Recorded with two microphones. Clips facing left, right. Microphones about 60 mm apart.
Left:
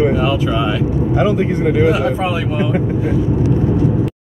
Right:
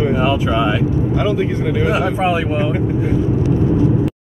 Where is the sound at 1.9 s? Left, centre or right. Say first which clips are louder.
Even; centre.